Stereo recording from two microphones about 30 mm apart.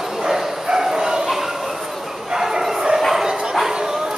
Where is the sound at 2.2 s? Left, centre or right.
Centre.